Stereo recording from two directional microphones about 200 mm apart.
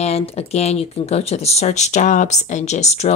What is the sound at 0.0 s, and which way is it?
Speech, 30° left (ahead or behind).